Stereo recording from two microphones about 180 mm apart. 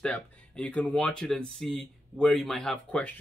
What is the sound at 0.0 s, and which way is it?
Speech, 5° left (ahead or behind).